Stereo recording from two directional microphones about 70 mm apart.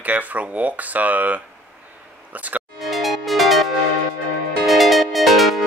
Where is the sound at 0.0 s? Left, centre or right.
Right.